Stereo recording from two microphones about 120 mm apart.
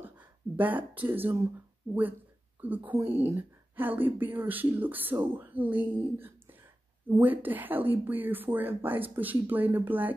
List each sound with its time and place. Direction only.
0.6 s speech: 15° right (ahead or behind)
2.6 s speech: 15° right (ahead or behind)